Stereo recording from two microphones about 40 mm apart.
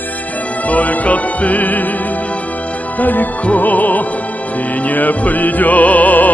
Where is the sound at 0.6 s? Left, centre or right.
Left.